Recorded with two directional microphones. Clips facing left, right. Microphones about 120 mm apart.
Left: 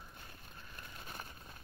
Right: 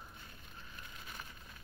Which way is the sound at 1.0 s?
40° left (ahead or behind).